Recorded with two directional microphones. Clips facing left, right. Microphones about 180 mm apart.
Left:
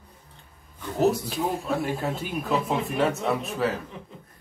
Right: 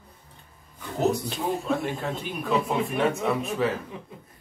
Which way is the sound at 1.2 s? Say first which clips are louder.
Even; centre (ahead or behind).